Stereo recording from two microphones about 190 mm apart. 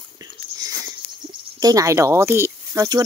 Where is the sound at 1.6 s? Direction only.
20° right (ahead or behind).